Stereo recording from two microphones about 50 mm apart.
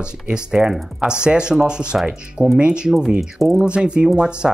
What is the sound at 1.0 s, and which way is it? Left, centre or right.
Speech, centre.